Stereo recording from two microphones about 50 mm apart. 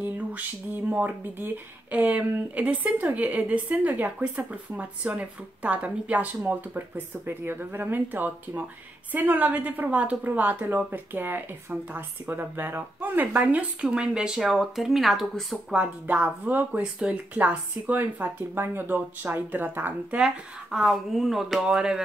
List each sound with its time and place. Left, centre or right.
0.9 s speech: right
7.2 s speech: right
13.3 s speech: right
13.7 s speech: centre
14.4 s speech: centre
16.1 s speech: right
20.2 s speech: centre